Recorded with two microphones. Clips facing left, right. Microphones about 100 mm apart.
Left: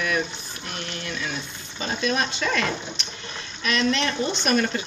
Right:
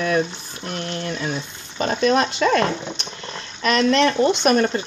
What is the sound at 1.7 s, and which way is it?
Speech, 60° right (ahead or behind).